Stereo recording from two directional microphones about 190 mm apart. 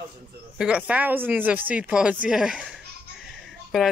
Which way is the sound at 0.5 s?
5° right (ahead or behind).